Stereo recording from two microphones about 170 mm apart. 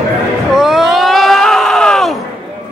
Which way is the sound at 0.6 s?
Centre (ahead or behind).